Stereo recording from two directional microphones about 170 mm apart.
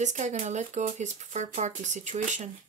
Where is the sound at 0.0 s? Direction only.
45° right (ahead or behind).